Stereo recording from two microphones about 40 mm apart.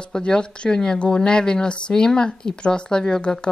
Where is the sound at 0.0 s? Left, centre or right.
Left.